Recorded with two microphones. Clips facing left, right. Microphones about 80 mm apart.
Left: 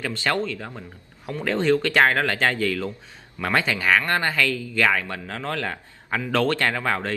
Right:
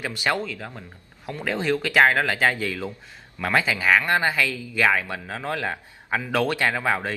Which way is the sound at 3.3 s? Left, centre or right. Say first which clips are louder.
Even; centre.